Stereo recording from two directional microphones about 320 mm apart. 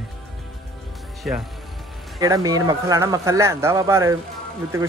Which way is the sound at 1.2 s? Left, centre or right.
Centre.